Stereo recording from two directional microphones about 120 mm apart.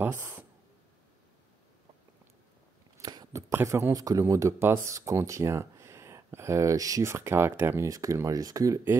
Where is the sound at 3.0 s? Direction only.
35° right (ahead or behind).